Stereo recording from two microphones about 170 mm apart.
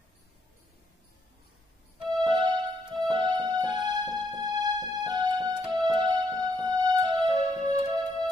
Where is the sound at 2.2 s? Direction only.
25° right (ahead or behind).